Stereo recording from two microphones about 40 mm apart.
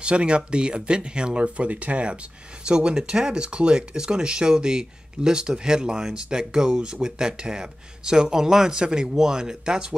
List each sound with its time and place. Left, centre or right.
0.0 s speech: right
2.6 s speech: right